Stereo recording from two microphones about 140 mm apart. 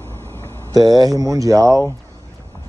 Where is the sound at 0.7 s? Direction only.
25° right (ahead or behind).